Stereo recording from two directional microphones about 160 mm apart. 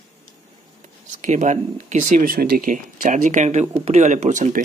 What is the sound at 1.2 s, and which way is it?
Speech, 50° right (ahead or behind).